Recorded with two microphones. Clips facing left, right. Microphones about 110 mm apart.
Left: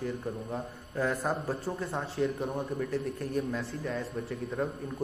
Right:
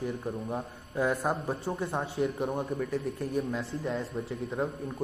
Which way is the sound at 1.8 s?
25° right (ahead or behind).